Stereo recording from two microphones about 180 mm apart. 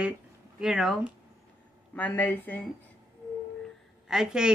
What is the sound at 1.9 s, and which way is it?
Speech, 10° left (ahead or behind).